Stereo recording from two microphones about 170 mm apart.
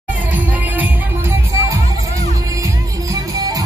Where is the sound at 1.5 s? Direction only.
15° right (ahead or behind).